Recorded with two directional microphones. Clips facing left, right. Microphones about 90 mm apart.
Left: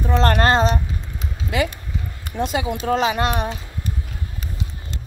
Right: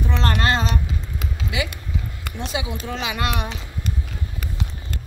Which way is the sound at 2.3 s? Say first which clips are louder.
Left 6 dB; 45° left (ahead or behind).